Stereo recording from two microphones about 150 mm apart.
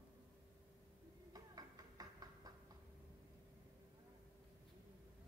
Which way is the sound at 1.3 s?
25° right (ahead or behind).